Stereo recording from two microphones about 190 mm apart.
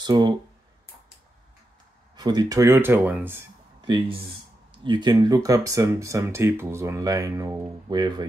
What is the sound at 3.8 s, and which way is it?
Speech, 25° right (ahead or behind).